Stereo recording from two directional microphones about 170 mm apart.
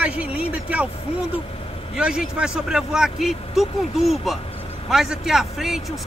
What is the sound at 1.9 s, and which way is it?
Speech, 5° right (ahead or behind).